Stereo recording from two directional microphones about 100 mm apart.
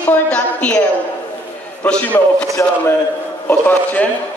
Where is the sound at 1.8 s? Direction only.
15° left (ahead or behind).